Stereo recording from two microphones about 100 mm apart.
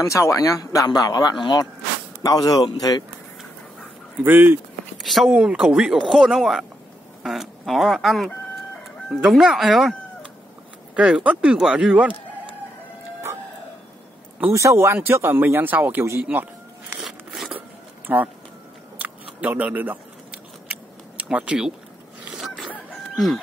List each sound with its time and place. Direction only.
0.0 s speech: 30° left (ahead or behind)
4.2 s speech: 20° right (ahead or behind)
4.9 s speech: centre (ahead or behind)
11.0 s speech: 10° right (ahead or behind)
14.5 s speech: 30° right (ahead or behind)
17.0 s a sound: 5° right (ahead or behind)
17.6 s zipper: 15° right (ahead or behind)
18.9 s a sound: 15° right (ahead or behind)
21.2 s speech: 10° right (ahead or behind)
23.1 s speech: centre (ahead or behind)